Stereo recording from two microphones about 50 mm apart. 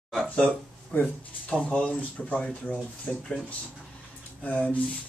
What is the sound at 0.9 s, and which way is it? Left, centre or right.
Speech, left.